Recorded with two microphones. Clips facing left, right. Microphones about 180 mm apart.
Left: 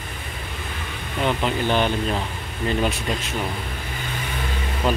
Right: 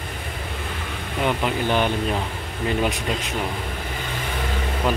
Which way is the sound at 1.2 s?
10° right (ahead or behind).